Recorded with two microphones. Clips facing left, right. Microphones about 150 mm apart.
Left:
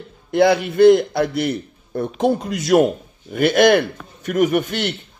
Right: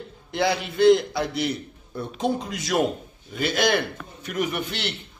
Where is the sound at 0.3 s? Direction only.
55° left (ahead or behind).